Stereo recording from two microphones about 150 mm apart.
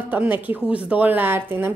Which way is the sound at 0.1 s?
10° right (ahead or behind).